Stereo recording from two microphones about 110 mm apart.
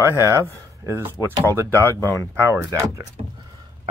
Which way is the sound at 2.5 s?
25° right (ahead or behind).